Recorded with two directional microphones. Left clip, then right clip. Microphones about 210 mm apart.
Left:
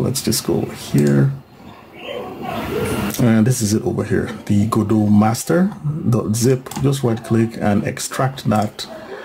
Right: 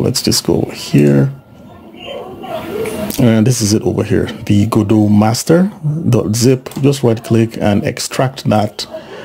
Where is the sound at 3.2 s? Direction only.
30° right (ahead or behind).